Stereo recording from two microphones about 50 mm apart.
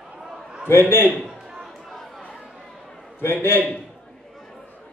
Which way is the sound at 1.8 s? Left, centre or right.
Centre.